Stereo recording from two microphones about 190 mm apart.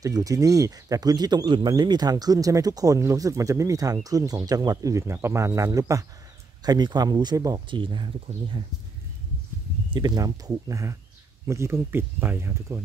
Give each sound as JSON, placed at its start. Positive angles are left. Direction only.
{"t": 0.0, "sound": "speech", "side_deg": -20}
{"t": 9.9, "sound": "speech", "side_deg": -20}